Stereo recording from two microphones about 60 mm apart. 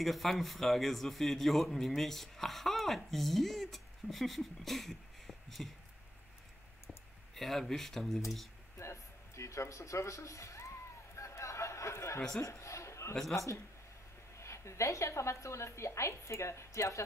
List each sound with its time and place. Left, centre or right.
0.0 s a man's voice: centre
7.3 s a man's voice: centre
8.7 s a sound: left
13.1 s a man's voice: centre
14.3 s a woman's voice: left